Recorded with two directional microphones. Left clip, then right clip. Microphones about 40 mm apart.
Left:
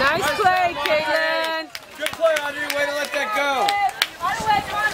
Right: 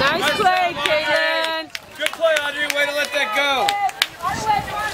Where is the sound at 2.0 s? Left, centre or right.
Right.